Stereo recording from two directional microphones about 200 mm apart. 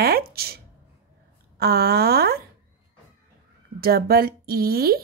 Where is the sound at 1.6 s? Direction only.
50° right (ahead or behind).